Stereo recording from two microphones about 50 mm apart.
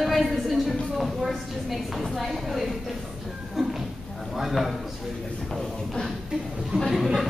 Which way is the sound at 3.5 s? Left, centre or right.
Centre.